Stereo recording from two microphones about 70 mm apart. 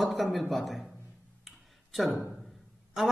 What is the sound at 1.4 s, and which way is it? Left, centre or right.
Tick-tock, centre.